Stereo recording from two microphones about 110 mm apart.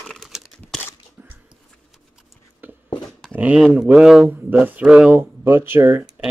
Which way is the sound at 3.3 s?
15° right (ahead or behind).